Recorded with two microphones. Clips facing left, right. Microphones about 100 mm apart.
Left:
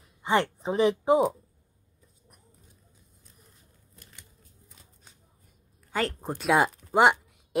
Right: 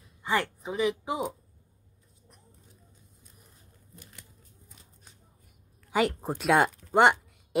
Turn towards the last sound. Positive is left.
turn(degrees=0)  # may be behind; listen again after turning